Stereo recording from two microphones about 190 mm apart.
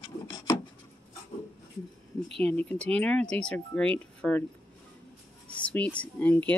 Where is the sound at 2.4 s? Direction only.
10° left (ahead or behind).